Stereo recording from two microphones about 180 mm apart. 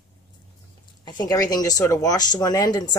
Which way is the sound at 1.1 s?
20° left (ahead or behind).